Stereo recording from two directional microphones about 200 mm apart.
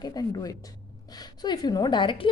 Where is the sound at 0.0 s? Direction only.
20° left (ahead or behind).